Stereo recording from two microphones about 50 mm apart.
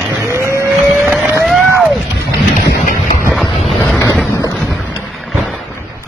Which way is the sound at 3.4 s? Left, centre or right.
Centre.